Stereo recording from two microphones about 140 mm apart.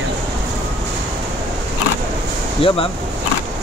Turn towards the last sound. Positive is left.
turn(degrees=40)  # may be behind; listen again after turning